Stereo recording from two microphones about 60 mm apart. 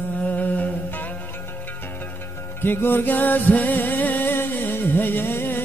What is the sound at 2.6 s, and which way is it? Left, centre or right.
Music, left.